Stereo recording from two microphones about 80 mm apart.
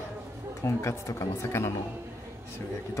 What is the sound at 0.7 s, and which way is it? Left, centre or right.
Speech, left.